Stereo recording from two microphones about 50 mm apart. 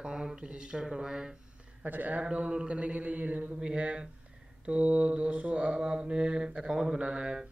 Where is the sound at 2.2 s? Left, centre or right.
Right.